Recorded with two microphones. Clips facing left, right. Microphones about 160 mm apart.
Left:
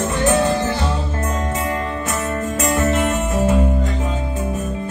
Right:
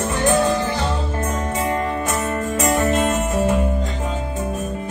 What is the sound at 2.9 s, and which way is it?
Guitar, 15° right (ahead or behind).